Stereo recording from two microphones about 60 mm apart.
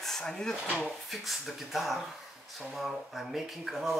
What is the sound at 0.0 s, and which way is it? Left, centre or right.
Speech, centre.